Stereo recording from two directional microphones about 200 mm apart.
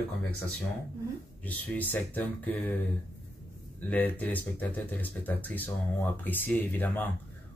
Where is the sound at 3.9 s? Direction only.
5° left (ahead or behind).